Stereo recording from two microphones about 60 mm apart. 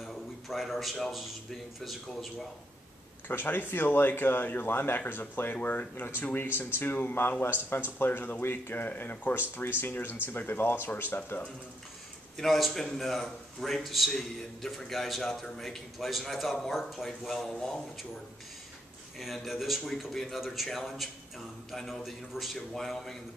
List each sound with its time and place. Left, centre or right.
0.0 s a man's voice: centre
3.3 s speech: left
12.4 s a man's voice: centre
19.1 s a man's voice: centre